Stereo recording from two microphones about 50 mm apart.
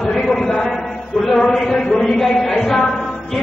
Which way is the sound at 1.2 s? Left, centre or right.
Centre.